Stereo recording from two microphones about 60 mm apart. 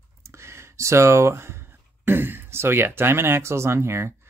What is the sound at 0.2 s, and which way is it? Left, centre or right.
Speech, right.